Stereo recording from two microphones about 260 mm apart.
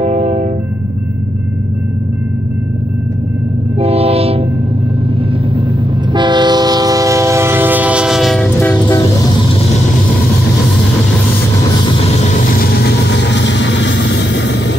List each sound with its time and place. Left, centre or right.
0.0 s music: right
3.8 s train: right
6.1 s train: centre
12.5 s vehicle: left